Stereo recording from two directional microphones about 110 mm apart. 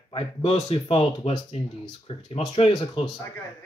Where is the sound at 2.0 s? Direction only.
60° left (ahead or behind).